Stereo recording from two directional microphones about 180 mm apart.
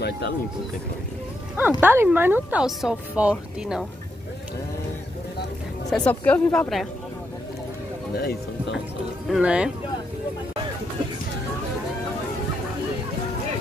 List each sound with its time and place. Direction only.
1.6 s speech: 10° right (ahead or behind)
5.9 s a woman's voice: 5° left (ahead or behind)
8.2 s speech: 60° left (ahead or behind)
9.3 s speech: 5° right (ahead or behind)